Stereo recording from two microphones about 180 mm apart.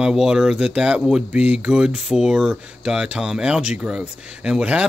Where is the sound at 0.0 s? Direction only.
5° right (ahead or behind).